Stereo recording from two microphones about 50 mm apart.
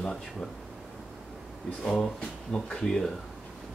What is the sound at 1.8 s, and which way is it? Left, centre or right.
Speech, centre.